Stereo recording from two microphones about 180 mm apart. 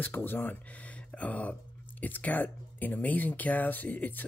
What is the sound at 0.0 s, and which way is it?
Speech, 10° left (ahead or behind).